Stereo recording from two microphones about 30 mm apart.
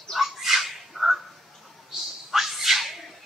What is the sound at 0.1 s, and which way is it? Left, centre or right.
Bird, centre.